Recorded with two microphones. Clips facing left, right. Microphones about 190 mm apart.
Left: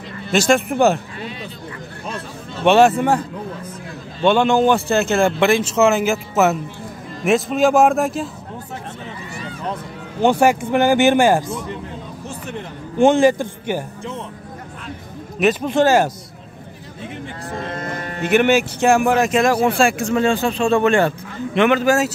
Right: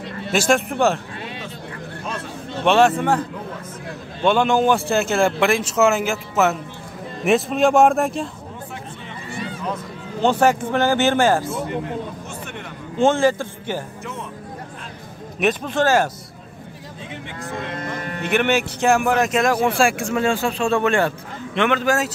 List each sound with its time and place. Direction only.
0.5 s speech: 5° left (ahead or behind)
2.6 s speech: 5° left (ahead or behind)
4.2 s speech: 5° right (ahead or behind)
6.0 s speech: 5° left (ahead or behind)
10.2 s speech: 10° left (ahead or behind)
13.0 s speech: 15° left (ahead or behind)
15.6 s speech: 10° left (ahead or behind)
17.5 s speech: 40° left (ahead or behind)
18.3 s speech: 5° left (ahead or behind)